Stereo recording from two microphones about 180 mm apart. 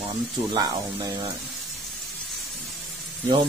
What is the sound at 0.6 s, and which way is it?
Speech, 20° right (ahead or behind).